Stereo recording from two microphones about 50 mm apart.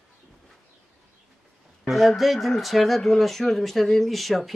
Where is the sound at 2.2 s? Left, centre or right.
Centre.